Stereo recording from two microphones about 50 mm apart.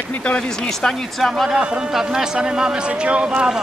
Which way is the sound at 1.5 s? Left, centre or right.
Centre.